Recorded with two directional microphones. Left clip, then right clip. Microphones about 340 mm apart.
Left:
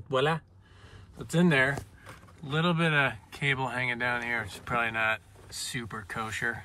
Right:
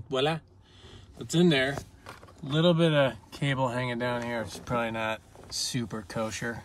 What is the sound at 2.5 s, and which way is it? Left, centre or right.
Speech, centre.